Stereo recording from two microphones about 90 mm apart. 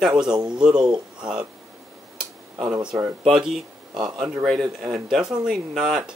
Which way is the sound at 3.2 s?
Centre (ahead or behind).